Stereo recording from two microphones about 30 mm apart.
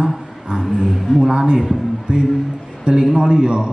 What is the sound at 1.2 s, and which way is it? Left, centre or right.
Speech, right.